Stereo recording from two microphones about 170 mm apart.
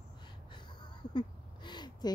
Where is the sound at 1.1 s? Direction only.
25° left (ahead or behind).